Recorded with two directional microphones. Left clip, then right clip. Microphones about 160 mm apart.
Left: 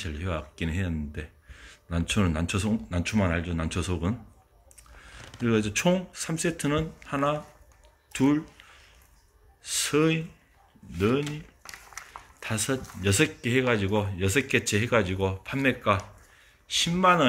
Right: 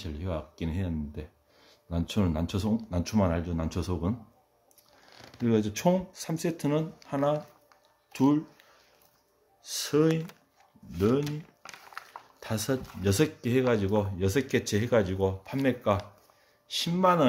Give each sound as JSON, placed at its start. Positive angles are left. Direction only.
{"t": 0.0, "sound": "speech", "side_deg": -5}
{"t": 3.6, "sound": "speech", "side_deg": -10}
{"t": 5.4, "sound": "speech", "side_deg": -15}
{"t": 9.7, "sound": "speech", "side_deg": -25}